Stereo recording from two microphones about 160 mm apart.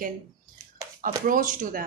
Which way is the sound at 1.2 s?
55° right (ahead or behind).